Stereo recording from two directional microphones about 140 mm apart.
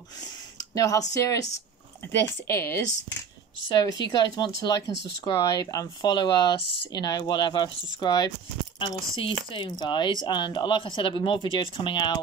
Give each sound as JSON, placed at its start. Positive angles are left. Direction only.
{"t": 0.6, "sound": "a sound", "side_deg": 25}
{"t": 1.1, "sound": "speech", "side_deg": 20}
{"t": 2.4, "sound": "speech", "side_deg": 20}
{"t": 3.6, "sound": "speech", "side_deg": 30}